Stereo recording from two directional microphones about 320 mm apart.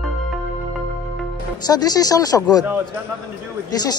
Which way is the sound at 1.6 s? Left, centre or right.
Centre.